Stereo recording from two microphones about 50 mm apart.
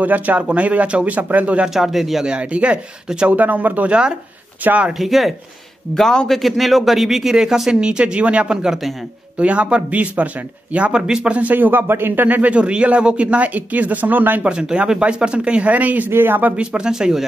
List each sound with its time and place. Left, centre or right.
0.0 s speech: right
1.7 s speech: centre
2.2 s speech: right
3.9 s a man's voice: centre
4.9 s speech: centre
5.9 s a man's voice: centre
11.3 s speech: right
12.3 s speech: right
14.4 s speech: centre
16.1 s speech: right
16.5 s a man's voice: centre